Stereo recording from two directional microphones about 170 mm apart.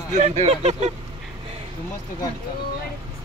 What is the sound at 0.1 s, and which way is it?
Speech, 45° right (ahead or behind).